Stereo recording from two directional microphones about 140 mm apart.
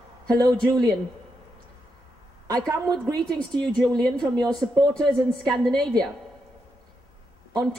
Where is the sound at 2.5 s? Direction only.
25° right (ahead or behind).